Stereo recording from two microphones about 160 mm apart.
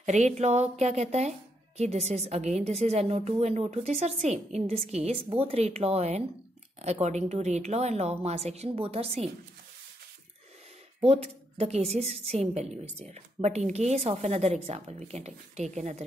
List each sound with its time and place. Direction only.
0.0 s a woman's voice: 45° right (ahead or behind)
11.0 s a woman's voice: 40° right (ahead or behind)